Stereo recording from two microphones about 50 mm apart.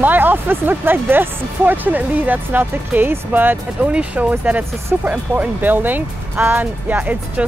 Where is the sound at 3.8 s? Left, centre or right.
Right.